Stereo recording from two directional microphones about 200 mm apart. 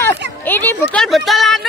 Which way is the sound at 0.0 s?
10° left (ahead or behind).